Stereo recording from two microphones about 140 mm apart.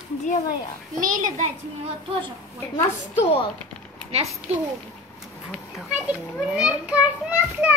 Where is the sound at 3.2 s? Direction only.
45° left (ahead or behind).